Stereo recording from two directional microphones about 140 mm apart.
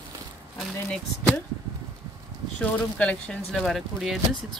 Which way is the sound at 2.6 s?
10° left (ahead or behind).